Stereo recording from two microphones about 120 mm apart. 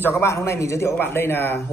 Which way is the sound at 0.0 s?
20° left (ahead or behind).